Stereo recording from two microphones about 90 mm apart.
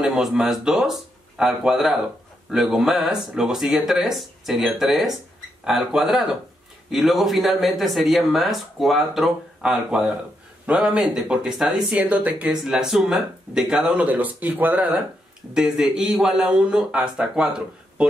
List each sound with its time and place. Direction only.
0.0 s speech: centre (ahead or behind)
12.4 s speech: 5° right (ahead or behind)
15.5 s speech: 5° right (ahead or behind)